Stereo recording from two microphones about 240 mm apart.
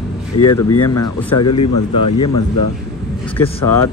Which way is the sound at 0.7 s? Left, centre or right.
Left.